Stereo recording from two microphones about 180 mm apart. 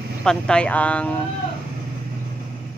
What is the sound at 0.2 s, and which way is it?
Speech, 5° left (ahead or behind).